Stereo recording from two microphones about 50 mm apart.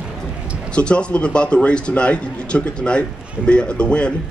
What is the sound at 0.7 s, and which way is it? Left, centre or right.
A man's voice, left.